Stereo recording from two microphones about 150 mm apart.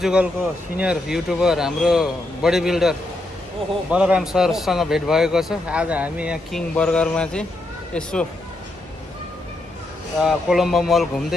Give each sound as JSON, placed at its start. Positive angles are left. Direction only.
{"t": 0.0, "sound": "speech", "side_deg": -5}
{"t": 6.7, "sound": "speech", "side_deg": 5}
{"t": 10.1, "sound": "speech", "side_deg": 0}